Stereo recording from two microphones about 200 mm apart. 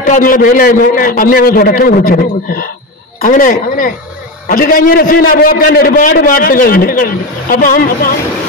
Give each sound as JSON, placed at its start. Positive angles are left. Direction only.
{"t": 0.0, "sound": "a man's voice", "side_deg": 45}